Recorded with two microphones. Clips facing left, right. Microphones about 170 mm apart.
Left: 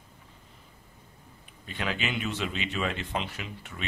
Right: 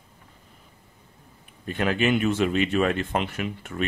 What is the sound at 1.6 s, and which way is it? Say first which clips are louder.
Speech: right 9 dB; 50° right (ahead or behind).